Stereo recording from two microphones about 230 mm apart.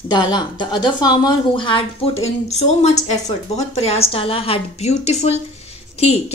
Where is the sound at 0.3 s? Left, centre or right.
Centre.